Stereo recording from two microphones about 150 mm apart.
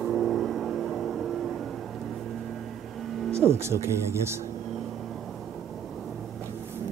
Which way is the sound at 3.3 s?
15° right (ahead or behind).